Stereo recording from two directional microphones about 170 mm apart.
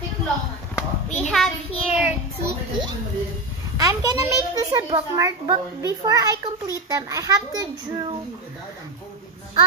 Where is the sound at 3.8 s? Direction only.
20° right (ahead or behind).